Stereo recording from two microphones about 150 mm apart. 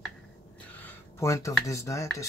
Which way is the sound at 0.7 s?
15° left (ahead or behind).